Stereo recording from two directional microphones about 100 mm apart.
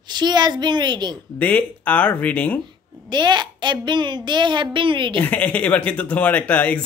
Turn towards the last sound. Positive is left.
turn(degrees=15)  # may be behind; listen again after turning